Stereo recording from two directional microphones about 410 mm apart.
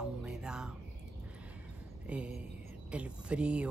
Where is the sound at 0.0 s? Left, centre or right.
Centre.